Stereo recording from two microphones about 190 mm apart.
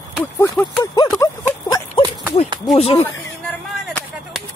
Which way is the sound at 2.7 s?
30° left (ahead or behind).